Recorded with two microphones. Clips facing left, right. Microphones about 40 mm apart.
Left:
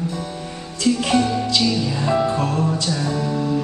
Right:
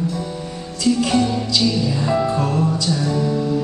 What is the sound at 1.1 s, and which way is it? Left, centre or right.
Music, centre.